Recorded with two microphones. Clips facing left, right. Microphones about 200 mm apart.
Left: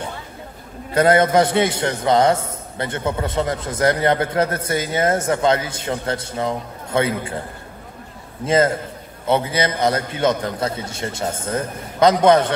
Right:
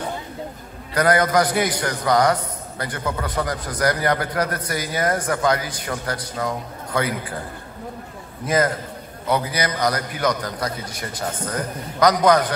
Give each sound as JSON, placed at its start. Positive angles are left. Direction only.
{"t": 0.9, "sound": "a man's voice", "side_deg": 25}
{"t": 8.5, "sound": "a man's voice", "side_deg": 25}